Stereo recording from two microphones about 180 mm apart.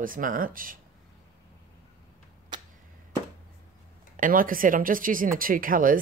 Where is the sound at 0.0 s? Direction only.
50° right (ahead or behind).